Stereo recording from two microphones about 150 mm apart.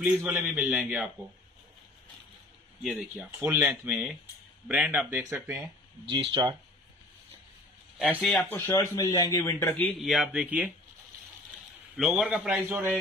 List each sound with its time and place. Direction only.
0.0 s a man's voice: 10° right (ahead or behind)
2.8 s speech: centre (ahead or behind)
3.3 s a man's voice: 10° right (ahead or behind)
6.0 s speech: 35° right (ahead or behind)
8.0 s a man's voice: centre (ahead or behind)
9.9 s speech: centre (ahead or behind)
12.0 s a man's voice: centre (ahead or behind)